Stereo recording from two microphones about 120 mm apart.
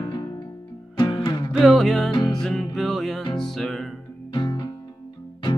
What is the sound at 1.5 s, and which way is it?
Music, centre (ahead or behind).